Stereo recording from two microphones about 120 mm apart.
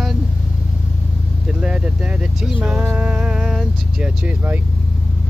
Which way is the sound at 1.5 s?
5° right (ahead or behind).